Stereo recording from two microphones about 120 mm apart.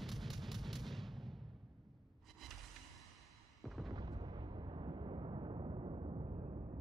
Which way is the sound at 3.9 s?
30° right (ahead or behind).